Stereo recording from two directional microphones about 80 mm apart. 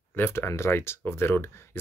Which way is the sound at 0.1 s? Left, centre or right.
Left.